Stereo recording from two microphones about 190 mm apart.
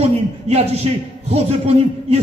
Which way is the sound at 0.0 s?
30° right (ahead or behind).